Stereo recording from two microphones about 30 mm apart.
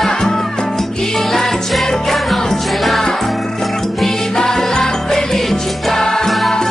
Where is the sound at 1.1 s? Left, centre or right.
Centre.